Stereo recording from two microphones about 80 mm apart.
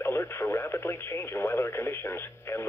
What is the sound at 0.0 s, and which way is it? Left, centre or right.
Speech, left.